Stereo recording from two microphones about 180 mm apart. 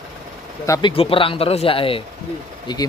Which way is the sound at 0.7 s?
25° left (ahead or behind).